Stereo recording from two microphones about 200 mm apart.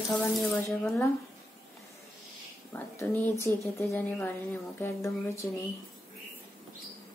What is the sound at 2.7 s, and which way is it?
Speech, 10° left (ahead or behind).